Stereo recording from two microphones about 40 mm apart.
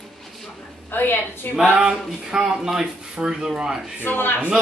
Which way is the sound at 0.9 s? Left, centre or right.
Left.